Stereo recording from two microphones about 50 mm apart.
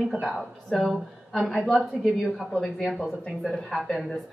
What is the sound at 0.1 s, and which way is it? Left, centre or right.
Speech, centre.